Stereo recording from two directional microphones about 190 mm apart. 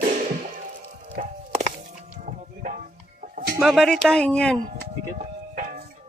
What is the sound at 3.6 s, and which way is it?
Speech, centre (ahead or behind).